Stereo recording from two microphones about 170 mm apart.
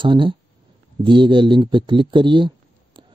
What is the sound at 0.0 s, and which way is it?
Speech, 30° right (ahead or behind).